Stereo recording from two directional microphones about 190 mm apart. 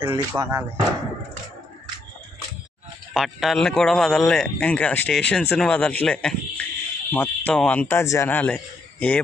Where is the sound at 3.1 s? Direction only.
Centre (ahead or behind).